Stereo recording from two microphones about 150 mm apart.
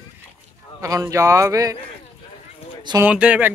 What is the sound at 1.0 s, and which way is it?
Speech, 20° right (ahead or behind).